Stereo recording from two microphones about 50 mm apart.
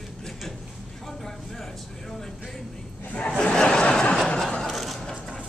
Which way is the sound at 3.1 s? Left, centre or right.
Left.